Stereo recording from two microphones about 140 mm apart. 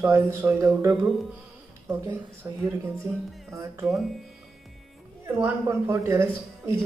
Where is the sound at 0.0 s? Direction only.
20° right (ahead or behind).